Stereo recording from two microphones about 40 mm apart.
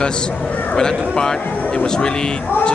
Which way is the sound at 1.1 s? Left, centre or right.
Centre.